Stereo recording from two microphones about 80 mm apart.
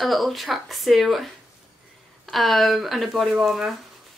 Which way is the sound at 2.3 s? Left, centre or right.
Centre.